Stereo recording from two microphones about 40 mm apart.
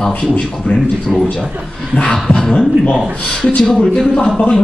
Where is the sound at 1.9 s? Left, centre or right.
Left.